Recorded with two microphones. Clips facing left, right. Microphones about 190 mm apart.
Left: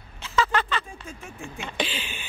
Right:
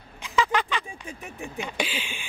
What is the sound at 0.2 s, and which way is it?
Speech, 15° right (ahead or behind).